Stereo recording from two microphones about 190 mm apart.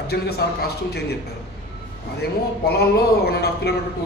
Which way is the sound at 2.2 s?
60° left (ahead or behind).